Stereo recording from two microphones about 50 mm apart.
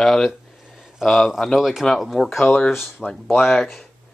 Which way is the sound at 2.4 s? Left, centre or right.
Centre.